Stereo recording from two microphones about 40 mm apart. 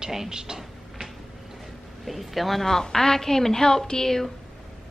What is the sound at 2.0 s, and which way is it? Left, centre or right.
Speech, centre.